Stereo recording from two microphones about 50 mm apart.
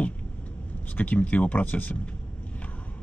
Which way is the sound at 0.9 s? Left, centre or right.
Left.